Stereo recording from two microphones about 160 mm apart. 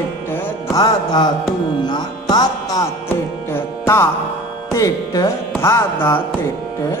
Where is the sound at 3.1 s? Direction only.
15° left (ahead or behind).